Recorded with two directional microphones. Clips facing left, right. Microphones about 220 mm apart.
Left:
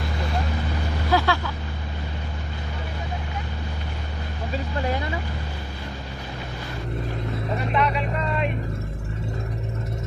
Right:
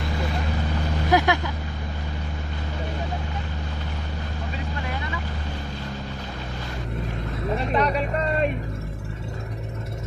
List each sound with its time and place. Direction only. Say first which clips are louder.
1.1 s vehicle: right 2 dB; 15° right (ahead or behind)
7.7 s vehicle: right 1 dB; 40° right (ahead or behind)